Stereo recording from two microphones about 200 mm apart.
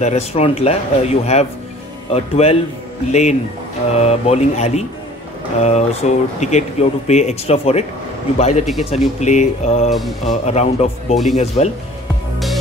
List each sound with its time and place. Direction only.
0.0 s speech: 30° left (ahead or behind)
9.8 s music: centre (ahead or behind)
10.2 s speech: 35° left (ahead or behind)